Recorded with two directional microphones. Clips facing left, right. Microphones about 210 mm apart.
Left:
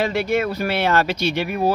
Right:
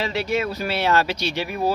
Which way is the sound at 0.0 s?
55° left (ahead or behind).